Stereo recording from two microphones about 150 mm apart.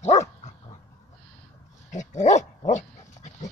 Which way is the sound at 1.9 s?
55° left (ahead or behind).